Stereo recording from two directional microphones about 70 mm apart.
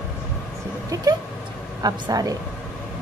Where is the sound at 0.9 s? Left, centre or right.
Right.